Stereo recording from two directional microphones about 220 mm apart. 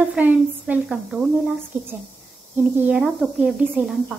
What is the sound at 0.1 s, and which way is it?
Speech, 5° right (ahead or behind).